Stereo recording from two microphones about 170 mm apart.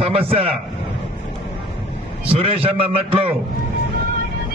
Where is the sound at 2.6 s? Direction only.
35° right (ahead or behind).